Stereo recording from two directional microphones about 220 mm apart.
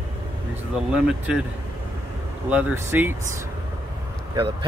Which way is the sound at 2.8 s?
10° right (ahead or behind).